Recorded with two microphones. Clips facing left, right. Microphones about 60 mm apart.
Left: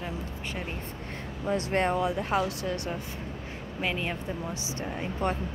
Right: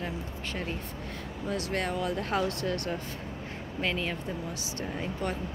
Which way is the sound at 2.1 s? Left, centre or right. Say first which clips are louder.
Left 1 dB; centre.